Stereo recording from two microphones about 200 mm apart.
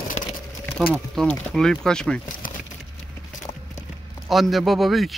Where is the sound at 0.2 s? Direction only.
35° left (ahead or behind).